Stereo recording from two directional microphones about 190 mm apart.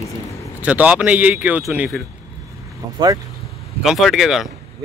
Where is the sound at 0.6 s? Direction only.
5° right (ahead or behind).